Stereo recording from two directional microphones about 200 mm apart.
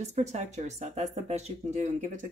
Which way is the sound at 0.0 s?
35° right (ahead or behind).